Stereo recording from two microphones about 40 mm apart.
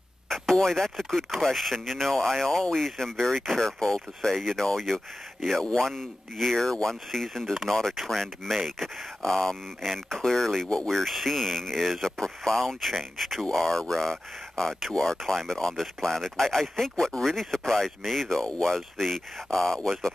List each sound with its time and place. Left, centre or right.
0.5 s speech: centre
18.4 s speech: centre
18.8 s speech: centre